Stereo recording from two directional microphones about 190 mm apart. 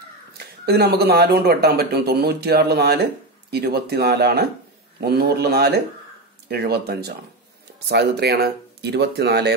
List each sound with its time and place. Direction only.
0.3 s speech: 55° right (ahead or behind)